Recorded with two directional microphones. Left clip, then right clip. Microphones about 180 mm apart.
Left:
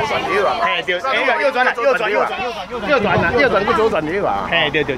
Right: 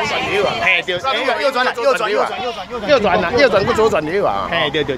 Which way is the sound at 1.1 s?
35° right (ahead or behind).